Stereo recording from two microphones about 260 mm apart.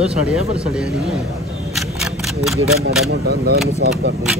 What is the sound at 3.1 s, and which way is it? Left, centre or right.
Speech, right.